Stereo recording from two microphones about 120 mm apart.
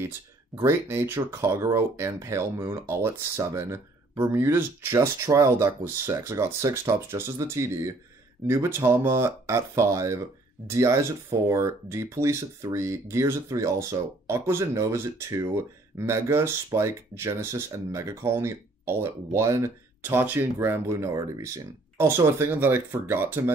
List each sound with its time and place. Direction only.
0.6 s speech: 25° right (ahead or behind)